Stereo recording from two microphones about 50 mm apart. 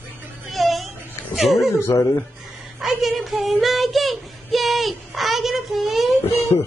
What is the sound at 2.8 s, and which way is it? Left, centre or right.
Speech, centre.